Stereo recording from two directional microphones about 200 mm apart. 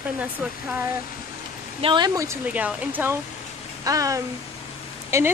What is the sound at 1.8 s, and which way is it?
Speech, 20° right (ahead or behind).